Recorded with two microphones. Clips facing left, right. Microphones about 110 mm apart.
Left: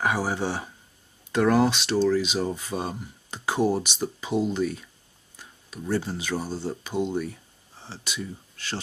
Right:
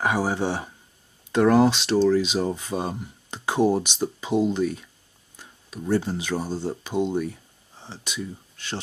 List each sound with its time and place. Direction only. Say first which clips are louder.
0.0 s speech: right 2 dB; 15° right (ahead or behind)